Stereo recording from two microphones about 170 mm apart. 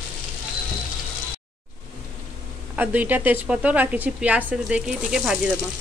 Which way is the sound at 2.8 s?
10° right (ahead or behind).